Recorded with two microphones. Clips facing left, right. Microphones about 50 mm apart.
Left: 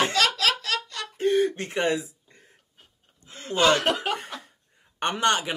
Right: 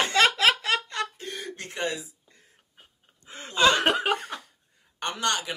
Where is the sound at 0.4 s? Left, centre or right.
Right.